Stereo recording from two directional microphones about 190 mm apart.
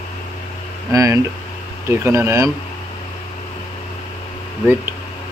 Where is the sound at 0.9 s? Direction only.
15° right (ahead or behind).